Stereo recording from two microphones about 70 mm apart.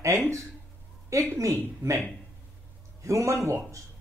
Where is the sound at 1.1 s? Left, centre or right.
Right.